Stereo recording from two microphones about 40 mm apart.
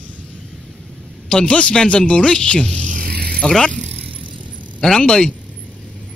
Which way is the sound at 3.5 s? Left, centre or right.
Centre.